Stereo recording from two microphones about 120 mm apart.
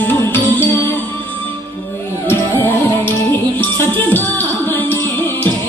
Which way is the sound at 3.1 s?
15° left (ahead or behind).